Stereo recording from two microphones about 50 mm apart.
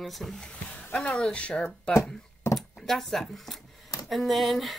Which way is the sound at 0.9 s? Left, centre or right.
Left.